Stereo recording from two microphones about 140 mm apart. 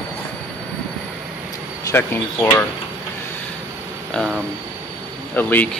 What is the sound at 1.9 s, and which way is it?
Speech, 15° left (ahead or behind).